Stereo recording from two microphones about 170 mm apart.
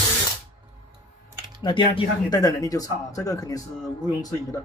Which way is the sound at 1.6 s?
30° left (ahead or behind).